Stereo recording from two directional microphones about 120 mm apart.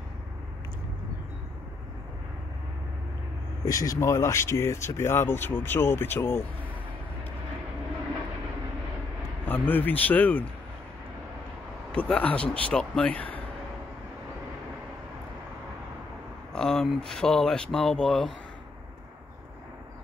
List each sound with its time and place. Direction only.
3.6 s speech: 30° left (ahead or behind)
9.5 s speech: 15° left (ahead or behind)
11.9 s speech: 10° left (ahead or behind)
16.5 s speech: 5° left (ahead or behind)